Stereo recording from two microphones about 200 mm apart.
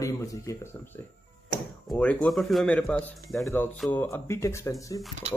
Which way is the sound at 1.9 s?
5° left (ahead or behind).